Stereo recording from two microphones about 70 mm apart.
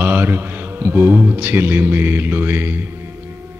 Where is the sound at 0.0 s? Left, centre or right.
Right.